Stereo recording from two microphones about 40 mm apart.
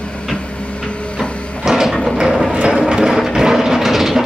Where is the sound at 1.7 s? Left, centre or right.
Centre.